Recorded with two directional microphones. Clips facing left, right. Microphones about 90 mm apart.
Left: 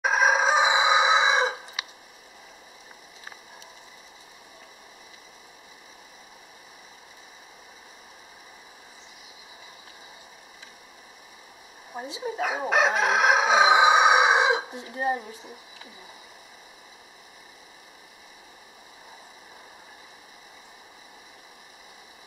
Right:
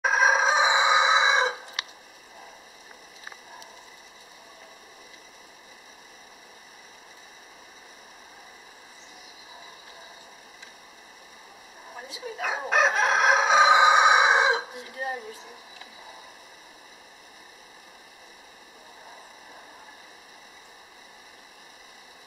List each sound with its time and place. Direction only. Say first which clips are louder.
0.0 s chicken: even; centre (ahead or behind)
11.9 s speech: left 7 dB; 20° left (ahead or behind)
12.4 s crowing: even; 5° left (ahead or behind)
14.7 s fowl: left 6 dB; 30° left (ahead or behind)